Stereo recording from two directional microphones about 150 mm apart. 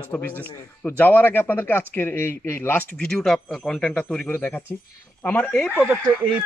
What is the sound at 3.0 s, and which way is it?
Speech, 5° left (ahead or behind).